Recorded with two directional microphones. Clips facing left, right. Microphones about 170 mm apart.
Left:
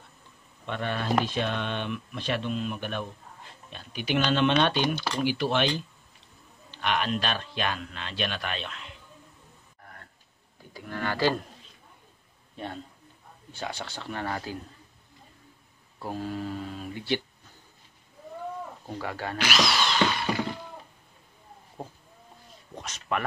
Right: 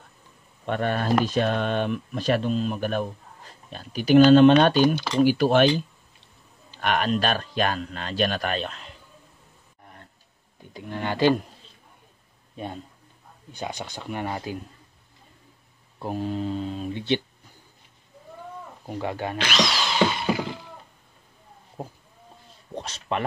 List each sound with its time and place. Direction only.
0.7 s speech: 45° right (ahead or behind)
6.8 s speech: 45° right (ahead or behind)
10.6 s speech: 20° right (ahead or behind)
13.5 s speech: 15° right (ahead or behind)
16.0 s speech: 20° right (ahead or behind)
18.9 s speech: 20° right (ahead or behind)
19.3 s speech: 5° left (ahead or behind)
19.9 s music: 10° right (ahead or behind)
22.8 s speech: 30° right (ahead or behind)